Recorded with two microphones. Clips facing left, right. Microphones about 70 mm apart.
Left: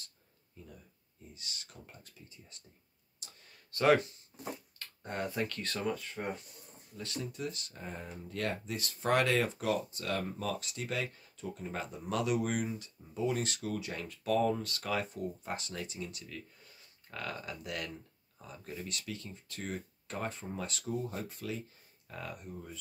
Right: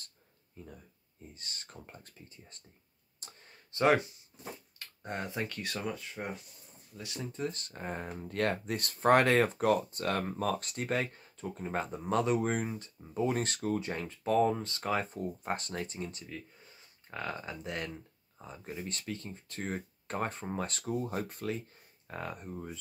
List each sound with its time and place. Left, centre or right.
0.6 s speech: right
3.2 s a sound: right
3.7 s speech: right; by 7.1 s centre
7.3 s speech: right
18.9 s speech: right
22.0 s speech: right